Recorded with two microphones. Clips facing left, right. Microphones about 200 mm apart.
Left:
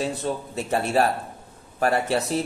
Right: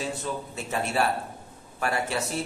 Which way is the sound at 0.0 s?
35° left (ahead or behind).